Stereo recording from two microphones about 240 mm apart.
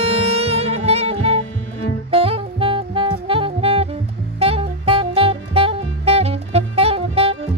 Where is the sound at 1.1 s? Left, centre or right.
Left.